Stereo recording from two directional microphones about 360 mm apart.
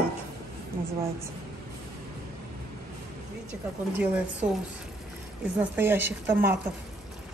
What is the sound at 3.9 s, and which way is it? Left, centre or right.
Speech, centre.